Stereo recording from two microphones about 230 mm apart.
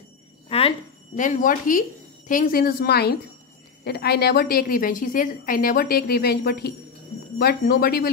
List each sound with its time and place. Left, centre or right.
0.5 s a woman's voice: left